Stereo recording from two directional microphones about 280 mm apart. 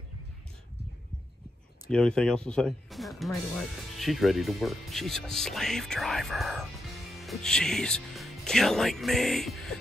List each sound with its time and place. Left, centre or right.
1.9 s speech: centre